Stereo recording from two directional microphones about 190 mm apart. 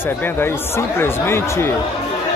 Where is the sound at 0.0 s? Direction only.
10° left (ahead or behind).